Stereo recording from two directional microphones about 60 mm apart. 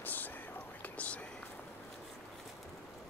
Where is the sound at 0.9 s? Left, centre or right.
Left.